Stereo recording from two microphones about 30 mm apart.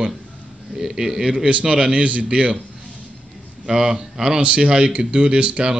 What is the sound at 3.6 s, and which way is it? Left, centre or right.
Speech, right.